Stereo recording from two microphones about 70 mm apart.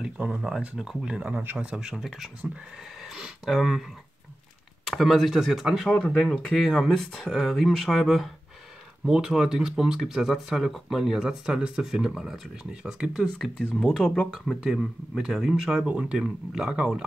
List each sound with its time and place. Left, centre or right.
0.3 s speech: centre
1.4 s speech: right
1.7 s speech: centre
3.0 s a sound: centre
3.5 s speech: centre
4.8 s speech: centre
5.9 s speech: centre
9.0 s speech: centre
13.6 s speech: centre
14.6 s speech: centre